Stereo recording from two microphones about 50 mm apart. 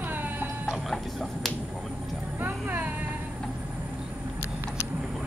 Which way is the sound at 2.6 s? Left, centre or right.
Right.